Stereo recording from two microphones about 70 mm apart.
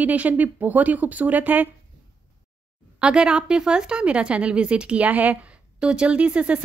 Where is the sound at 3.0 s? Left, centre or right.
Centre.